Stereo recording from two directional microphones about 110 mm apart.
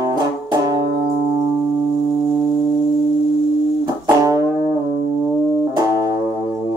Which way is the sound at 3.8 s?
30° right (ahead or behind).